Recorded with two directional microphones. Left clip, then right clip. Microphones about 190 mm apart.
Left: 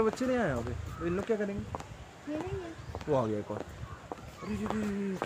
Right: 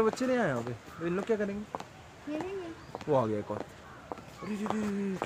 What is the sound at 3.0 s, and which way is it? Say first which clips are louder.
Speech: right 2 dB; 15° right (ahead or behind).